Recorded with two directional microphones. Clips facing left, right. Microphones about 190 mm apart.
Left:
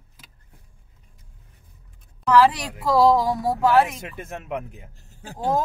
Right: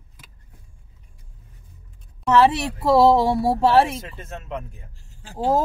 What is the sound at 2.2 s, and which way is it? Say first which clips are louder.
Speech: right 1 dB; 25° right (ahead or behind).